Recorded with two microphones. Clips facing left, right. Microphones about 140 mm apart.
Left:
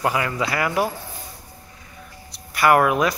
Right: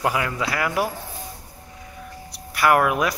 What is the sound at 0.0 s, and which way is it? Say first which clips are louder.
Speech: left 1 dB; centre (ahead or behind).